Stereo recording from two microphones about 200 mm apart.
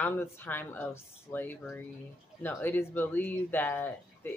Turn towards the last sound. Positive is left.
turn(degrees=10)  # may be behind; listen again after turning